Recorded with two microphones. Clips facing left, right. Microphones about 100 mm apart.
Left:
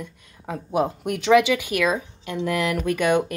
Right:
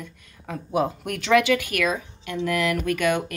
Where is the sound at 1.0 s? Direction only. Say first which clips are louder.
Left 3 dB; 15° left (ahead or behind).